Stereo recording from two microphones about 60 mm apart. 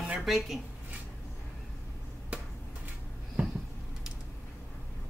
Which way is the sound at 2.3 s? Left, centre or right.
Right.